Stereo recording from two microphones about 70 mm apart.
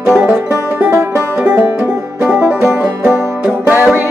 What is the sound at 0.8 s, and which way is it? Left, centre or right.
Music, right.